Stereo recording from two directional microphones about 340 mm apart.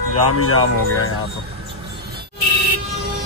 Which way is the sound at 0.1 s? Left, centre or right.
Left.